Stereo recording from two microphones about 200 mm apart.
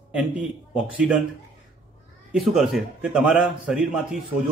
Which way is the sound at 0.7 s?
5° right (ahead or behind).